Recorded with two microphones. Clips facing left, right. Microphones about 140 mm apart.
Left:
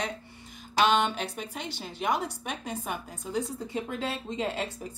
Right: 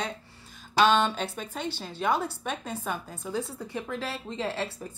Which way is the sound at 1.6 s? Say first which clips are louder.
Right 2 dB; 15° left (ahead or behind).